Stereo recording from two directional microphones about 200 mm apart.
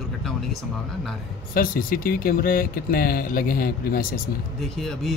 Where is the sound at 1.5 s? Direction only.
45° left (ahead or behind).